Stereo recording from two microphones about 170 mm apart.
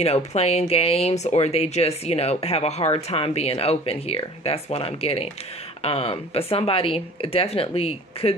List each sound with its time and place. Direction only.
0.0 s speech: 40° left (ahead or behind)